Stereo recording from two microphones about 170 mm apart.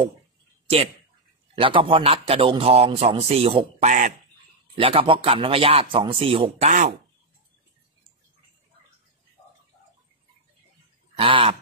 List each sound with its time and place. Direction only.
1.5 s a man's voice: 30° right (ahead or behind)
6.7 s speech: 50° right (ahead or behind)
11.1 s a man's voice: 30° right (ahead or behind)